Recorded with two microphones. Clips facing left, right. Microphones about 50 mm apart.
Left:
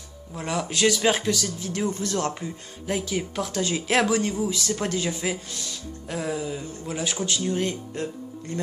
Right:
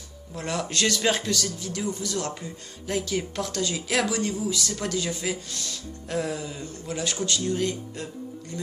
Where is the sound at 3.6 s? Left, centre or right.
Left.